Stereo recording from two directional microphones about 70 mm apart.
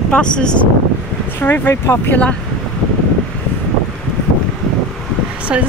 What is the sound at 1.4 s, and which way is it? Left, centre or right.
Speech, left.